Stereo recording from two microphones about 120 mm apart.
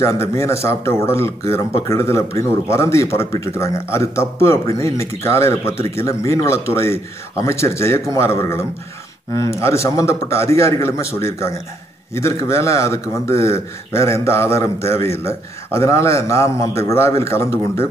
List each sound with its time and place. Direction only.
0.0 s a man's voice: 20° left (ahead or behind)